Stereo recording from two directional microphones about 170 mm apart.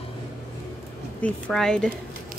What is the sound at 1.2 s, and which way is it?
Speech, 5° left (ahead or behind).